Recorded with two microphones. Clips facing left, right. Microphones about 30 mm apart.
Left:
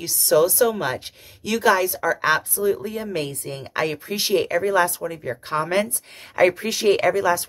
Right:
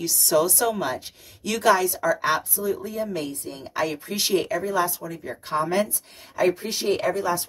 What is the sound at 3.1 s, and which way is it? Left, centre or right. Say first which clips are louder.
Speech: left 3 dB; left.